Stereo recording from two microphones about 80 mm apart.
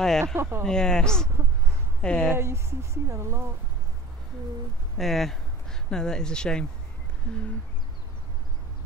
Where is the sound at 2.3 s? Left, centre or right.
Right.